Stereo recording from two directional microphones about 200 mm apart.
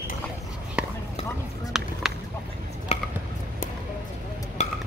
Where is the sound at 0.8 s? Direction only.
5° right (ahead or behind).